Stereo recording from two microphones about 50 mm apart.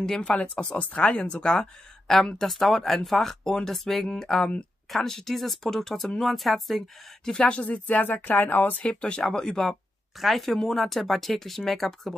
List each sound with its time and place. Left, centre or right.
0.0 s speech: centre
2.5 s speech: centre
7.3 s speech: left
8.8 s speech: left; by 12.2 s centre